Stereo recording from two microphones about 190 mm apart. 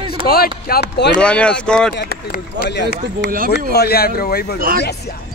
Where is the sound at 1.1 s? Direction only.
5° left (ahead or behind).